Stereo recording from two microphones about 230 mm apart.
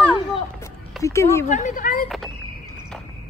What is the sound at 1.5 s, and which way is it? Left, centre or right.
Speech, left.